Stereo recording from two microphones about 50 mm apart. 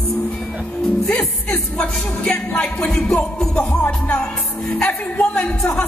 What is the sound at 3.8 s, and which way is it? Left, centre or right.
Music, left.